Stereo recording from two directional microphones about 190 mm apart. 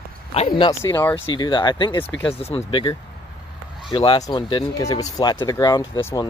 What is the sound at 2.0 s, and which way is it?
Speech, 10° left (ahead or behind).